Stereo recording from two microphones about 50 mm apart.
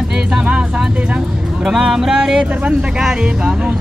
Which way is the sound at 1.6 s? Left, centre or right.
Centre.